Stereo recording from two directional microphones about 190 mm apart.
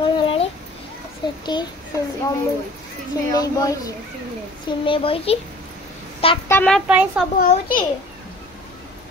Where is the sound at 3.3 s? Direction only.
20° left (ahead or behind).